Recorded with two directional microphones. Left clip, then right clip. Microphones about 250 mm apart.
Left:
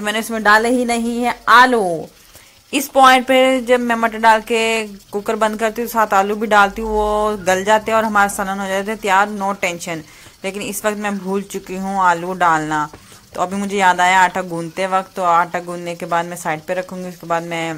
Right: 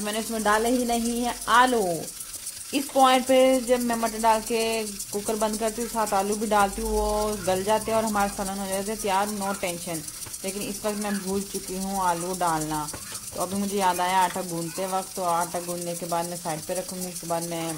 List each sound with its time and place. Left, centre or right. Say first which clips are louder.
0.0 s speech: left 10 dB; centre